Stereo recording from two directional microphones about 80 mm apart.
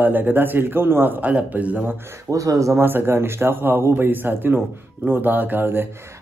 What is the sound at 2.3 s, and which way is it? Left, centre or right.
Speech, right.